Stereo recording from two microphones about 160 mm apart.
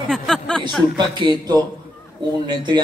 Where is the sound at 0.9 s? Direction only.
30° right (ahead or behind).